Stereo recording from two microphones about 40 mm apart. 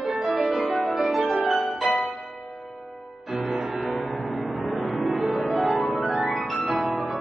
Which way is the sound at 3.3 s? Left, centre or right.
Centre.